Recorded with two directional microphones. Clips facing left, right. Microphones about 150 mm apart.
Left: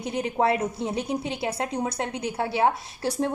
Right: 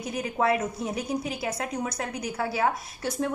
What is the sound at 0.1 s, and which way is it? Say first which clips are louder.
A woman's voice: left 2 dB; 25° left (ahead or behind).